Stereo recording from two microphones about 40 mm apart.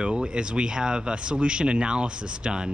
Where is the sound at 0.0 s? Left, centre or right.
Right.